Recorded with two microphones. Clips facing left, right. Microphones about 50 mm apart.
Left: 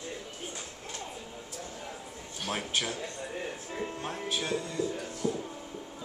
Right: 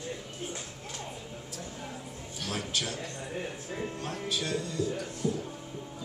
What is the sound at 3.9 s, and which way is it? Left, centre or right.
Music, left.